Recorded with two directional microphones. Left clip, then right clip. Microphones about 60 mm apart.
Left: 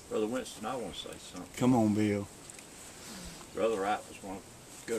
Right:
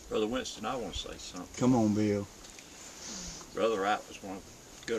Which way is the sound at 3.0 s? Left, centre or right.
Right.